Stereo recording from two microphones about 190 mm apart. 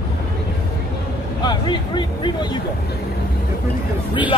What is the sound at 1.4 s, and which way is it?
Speech, 25° left (ahead or behind).